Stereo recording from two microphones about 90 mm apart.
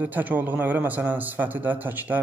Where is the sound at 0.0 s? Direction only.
20° right (ahead or behind).